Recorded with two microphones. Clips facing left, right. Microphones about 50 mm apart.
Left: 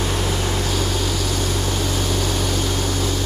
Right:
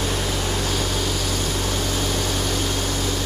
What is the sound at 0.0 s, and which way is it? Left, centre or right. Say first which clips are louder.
Vehicle: left 2 dB; centre.